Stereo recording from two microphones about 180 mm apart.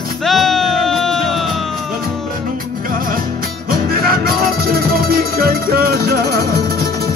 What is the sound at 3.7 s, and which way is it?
Music, 55° right (ahead or behind).